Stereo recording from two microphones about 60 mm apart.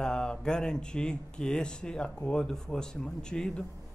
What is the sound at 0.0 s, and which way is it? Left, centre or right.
Speech, centre.